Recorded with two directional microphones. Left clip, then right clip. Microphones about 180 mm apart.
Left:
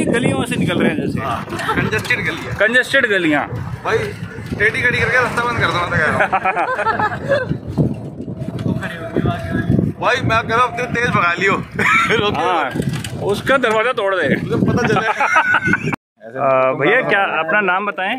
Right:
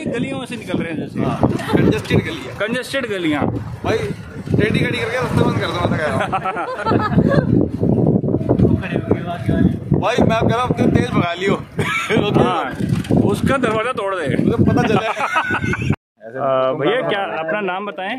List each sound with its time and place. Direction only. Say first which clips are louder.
1.8 s speech: right 2 dB; centre (ahead or behind)
4.6 s speech: left 4 dB; 5° right (ahead or behind)
10.1 s speech: left 2 dB; 10° right (ahead or behind); by 14.4 s 5° left (ahead or behind)
14.5 s speech: even; 15° right (ahead or behind)
16.4 s speech: left 3 dB; centre (ahead or behind)